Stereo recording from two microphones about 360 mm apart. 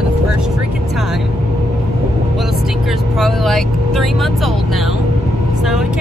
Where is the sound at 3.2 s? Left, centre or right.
Centre.